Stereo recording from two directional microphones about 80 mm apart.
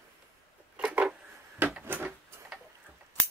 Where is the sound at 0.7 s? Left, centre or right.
Centre.